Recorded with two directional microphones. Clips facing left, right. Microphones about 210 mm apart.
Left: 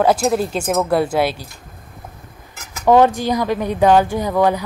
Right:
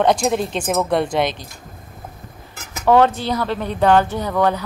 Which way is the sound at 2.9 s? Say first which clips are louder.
Left 2 dB; 15° left (ahead or behind).